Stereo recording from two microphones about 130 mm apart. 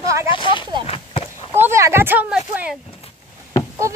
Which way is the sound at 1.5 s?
20° right (ahead or behind).